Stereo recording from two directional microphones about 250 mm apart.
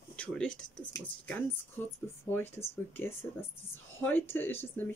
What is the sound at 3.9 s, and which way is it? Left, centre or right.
Speech, centre.